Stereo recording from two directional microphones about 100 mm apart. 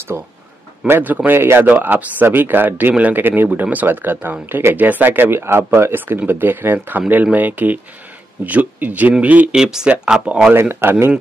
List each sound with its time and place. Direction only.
0.1 s a man's voice: 25° right (ahead or behind); by 10.5 s 10° right (ahead or behind)
10.5 s a man's voice: 25° right (ahead or behind)